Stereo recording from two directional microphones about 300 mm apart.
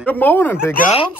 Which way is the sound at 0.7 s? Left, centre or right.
Centre.